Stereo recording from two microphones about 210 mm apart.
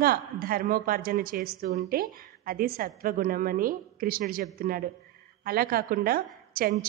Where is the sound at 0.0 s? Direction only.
45° right (ahead or behind).